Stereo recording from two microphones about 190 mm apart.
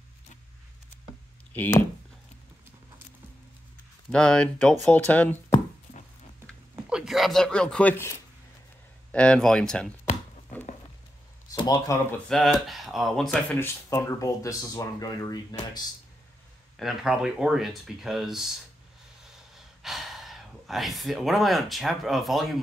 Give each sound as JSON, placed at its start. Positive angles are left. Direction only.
{"t": 1.5, "sound": "speech", "side_deg": 10}
{"t": 4.1, "sound": "speech", "side_deg": 5}
{"t": 6.9, "sound": "speech", "side_deg": 0}
{"t": 11.5, "sound": "speech", "side_deg": 20}
{"t": 12.1, "sound": "speech", "side_deg": 0}
{"t": 13.8, "sound": "speech", "side_deg": 15}
{"t": 16.7, "sound": "speech", "side_deg": 0}
{"t": 19.5, "sound": "speech", "side_deg": 0}